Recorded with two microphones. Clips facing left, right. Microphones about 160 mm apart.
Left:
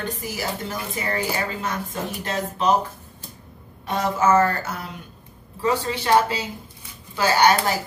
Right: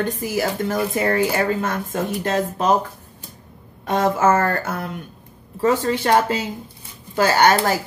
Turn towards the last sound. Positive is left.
turn(degrees=-50)  # may be behind; listen again after turning